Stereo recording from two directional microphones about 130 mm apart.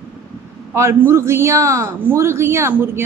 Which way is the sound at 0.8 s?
20° right (ahead or behind).